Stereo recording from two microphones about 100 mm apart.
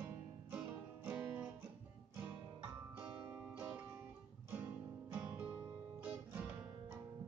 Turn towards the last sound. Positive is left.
turn(degrees=-20)  # may be behind; listen again after turning